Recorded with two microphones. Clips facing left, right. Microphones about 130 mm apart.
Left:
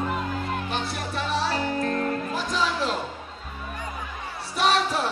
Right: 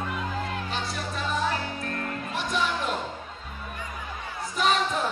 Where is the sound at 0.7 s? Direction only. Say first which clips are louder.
Left 2 dB; 75° left (ahead or behind).